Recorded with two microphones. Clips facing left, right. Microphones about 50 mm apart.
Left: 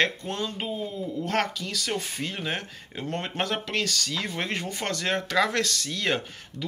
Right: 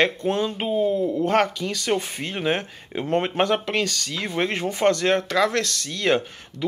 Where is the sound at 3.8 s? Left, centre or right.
Centre.